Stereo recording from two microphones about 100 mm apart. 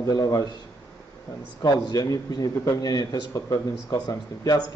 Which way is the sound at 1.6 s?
45° left (ahead or behind).